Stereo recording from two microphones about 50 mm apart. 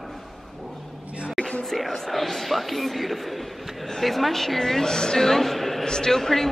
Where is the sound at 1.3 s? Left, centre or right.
Centre.